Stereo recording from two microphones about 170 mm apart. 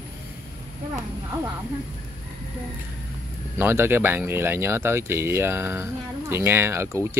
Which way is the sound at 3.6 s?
15° right (ahead or behind).